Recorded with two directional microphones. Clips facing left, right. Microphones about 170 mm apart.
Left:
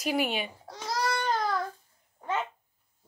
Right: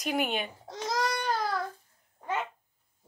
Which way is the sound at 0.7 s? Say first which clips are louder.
Right 4 dB; 20° right (ahead or behind).